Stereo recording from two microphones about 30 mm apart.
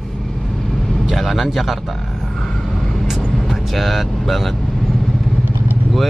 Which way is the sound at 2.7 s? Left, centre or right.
Centre.